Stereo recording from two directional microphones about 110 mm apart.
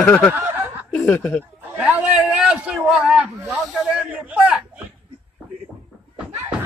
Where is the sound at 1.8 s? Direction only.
10° right (ahead or behind).